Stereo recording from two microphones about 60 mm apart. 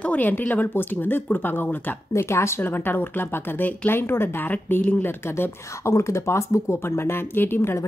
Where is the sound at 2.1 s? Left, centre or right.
Left.